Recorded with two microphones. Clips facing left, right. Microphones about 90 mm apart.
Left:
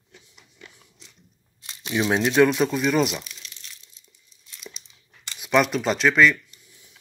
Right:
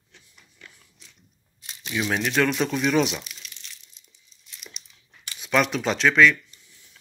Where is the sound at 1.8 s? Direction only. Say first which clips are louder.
Left 4 dB; 25° left (ahead or behind).